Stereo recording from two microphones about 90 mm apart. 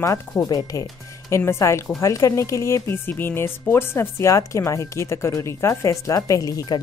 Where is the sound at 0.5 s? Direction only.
45° left (ahead or behind).